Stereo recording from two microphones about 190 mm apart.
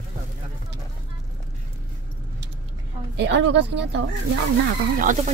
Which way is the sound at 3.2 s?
70° right (ahead or behind).